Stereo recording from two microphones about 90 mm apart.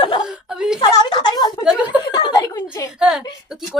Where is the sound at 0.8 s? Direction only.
55° left (ahead or behind).